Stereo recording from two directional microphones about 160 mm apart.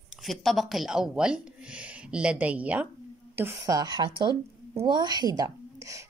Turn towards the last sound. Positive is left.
turn(degrees=-20)  # may be behind; listen again after turning